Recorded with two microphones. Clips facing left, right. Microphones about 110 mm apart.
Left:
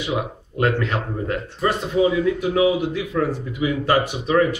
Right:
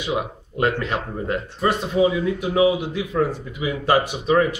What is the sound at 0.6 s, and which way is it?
Speech, 20° right (ahead or behind).